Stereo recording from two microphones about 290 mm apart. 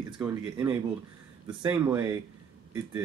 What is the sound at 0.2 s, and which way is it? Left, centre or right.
Speech, centre.